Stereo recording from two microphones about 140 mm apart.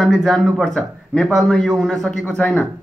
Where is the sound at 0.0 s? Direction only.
Centre (ahead or behind).